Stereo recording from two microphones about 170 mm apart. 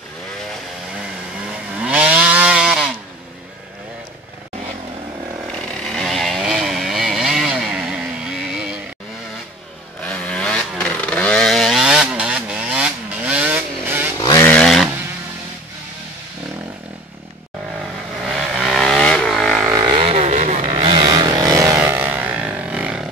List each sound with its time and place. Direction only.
1.5 s vehicle: 5° right (ahead or behind)
5.8 s vehicle: centre (ahead or behind)
10.0 s chainsaw: 5° left (ahead or behind); by 14.0 s 10° right (ahead or behind)
14.4 s vehicle: 5° left (ahead or behind)
18.2 s vehicle: 5° right (ahead or behind)
19.7 s vehicle: 25° right (ahead or behind); by 23.0 s 5° right (ahead or behind)